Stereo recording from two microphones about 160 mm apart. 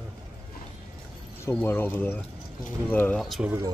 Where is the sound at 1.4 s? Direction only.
15° left (ahead or behind).